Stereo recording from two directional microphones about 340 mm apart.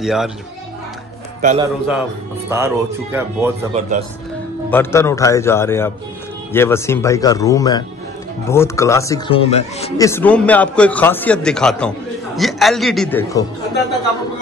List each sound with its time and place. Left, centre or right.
0.0 s a man's voice: centre
1.4 s a man's voice: right
2.5 s speech: centre
4.6 s a man's voice: centre